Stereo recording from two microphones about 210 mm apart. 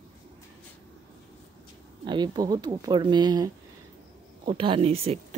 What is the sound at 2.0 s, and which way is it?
Speech, 20° right (ahead or behind).